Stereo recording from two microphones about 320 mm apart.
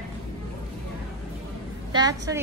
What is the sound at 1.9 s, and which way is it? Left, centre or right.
Speech, centre.